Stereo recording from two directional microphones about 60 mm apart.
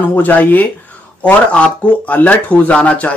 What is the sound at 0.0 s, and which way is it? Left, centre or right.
Speech, left.